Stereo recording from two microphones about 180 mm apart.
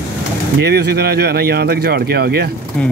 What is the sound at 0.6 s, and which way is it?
Speech, 65° right (ahead or behind).